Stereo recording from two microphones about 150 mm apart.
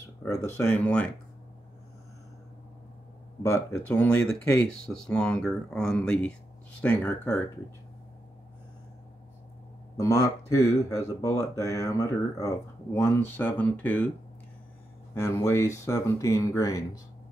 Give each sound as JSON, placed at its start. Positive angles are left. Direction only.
{"t": 0.0, "sound": "speech", "side_deg": 20}
{"t": 3.4, "sound": "speech", "side_deg": 20}
{"t": 3.8, "sound": "speech", "side_deg": 10}
{"t": 9.9, "sound": "speech", "side_deg": 20}
{"t": 15.1, "sound": "speech", "side_deg": 20}